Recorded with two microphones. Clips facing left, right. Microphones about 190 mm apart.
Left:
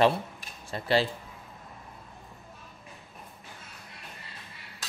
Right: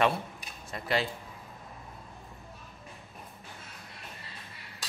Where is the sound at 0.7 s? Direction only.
30° left (ahead or behind).